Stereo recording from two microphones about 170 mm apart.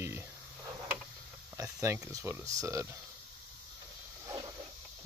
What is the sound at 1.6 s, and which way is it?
Speech, 20° right (ahead or behind).